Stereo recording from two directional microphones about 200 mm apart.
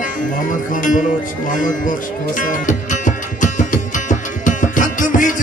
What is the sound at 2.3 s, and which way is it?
Music, 40° left (ahead or behind).